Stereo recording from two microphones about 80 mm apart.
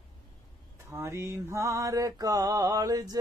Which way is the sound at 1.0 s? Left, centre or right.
Right.